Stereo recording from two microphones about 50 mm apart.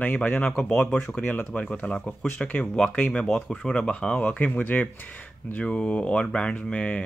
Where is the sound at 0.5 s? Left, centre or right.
Centre.